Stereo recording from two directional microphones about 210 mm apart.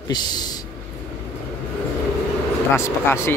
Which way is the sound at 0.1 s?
20° left (ahead or behind).